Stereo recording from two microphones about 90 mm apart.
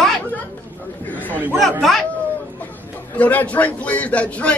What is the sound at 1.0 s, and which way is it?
Speech, 20° left (ahead or behind).